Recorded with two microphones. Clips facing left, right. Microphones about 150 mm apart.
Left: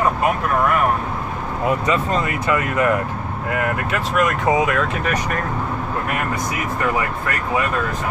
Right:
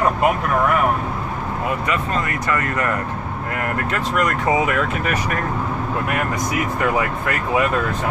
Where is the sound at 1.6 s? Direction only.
20° left (ahead or behind).